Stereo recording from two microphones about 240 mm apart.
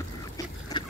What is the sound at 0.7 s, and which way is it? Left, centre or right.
Vehicle, centre.